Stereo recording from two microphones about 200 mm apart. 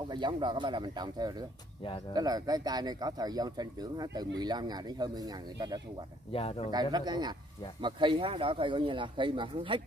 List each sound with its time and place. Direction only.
0.1 s speech: 25° right (ahead or behind)
6.3 s speech: 30° left (ahead or behind)
6.7 s speech: 20° right (ahead or behind)